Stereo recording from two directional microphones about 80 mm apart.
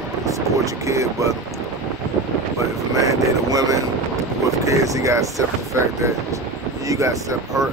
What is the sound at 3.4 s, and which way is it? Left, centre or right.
Speech, right.